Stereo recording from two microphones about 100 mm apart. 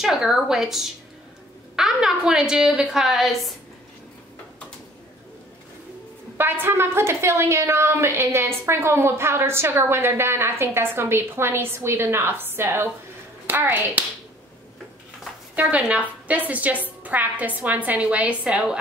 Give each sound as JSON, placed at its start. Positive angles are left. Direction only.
{"t": 0.0, "sound": "a woman's voice", "side_deg": -5}
{"t": 6.3, "sound": "a woman's voice", "side_deg": -20}
{"t": 15.5, "sound": "a woman's voice", "side_deg": -15}